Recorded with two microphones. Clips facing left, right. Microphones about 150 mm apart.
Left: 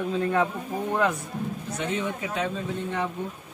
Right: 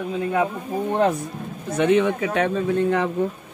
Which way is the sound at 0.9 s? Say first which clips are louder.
Right 5 dB; 30° right (ahead or behind).